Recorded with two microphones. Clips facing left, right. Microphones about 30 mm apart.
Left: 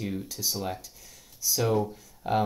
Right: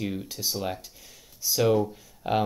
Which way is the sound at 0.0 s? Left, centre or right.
Centre.